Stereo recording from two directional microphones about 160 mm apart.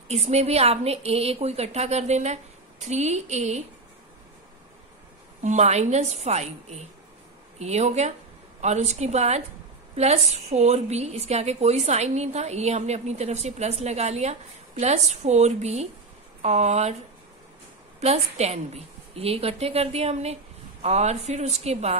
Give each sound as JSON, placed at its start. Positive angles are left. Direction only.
{"t": 0.1, "sound": "a woman's voice", "side_deg": -40}
{"t": 5.4, "sound": "a woman's voice", "side_deg": -45}
{"t": 18.0, "sound": "a woman's voice", "side_deg": -40}